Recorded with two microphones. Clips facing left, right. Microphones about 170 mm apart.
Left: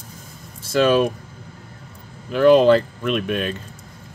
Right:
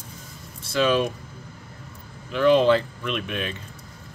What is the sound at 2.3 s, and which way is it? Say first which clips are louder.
Speech: left 5 dB; 45° left (ahead or behind).